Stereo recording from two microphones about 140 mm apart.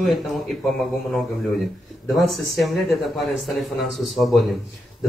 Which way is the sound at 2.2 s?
Centre (ahead or behind).